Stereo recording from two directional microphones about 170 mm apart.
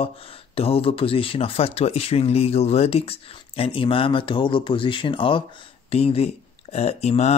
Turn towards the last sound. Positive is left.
turn(degrees=40)  # may be behind; listen again after turning